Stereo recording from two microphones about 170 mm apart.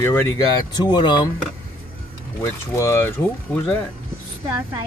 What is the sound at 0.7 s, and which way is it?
Speech, 25° left (ahead or behind).